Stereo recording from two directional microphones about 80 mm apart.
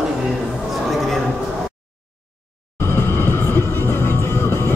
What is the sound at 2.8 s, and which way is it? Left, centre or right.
Music, left.